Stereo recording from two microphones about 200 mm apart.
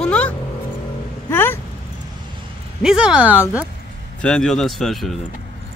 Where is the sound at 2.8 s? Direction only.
5° right (ahead or behind).